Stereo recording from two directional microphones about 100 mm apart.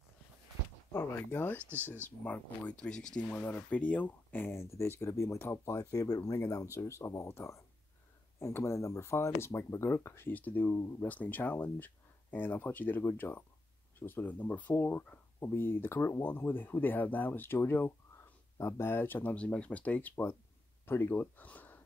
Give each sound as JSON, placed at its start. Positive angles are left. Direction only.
{"t": 0.9, "sound": "speech", "side_deg": 20}